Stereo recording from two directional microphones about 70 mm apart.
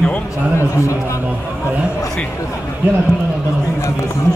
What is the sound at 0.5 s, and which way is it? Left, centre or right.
Speech, left.